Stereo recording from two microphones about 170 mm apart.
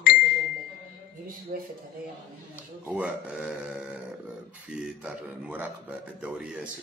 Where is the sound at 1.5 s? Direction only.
55° right (ahead or behind).